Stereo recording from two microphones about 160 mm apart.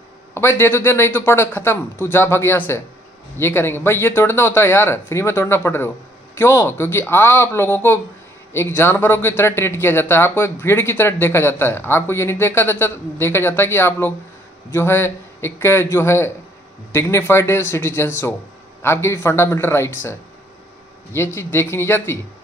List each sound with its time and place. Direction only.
0.3 s speech: 15° left (ahead or behind)
21.4 s speech: 15° left (ahead or behind)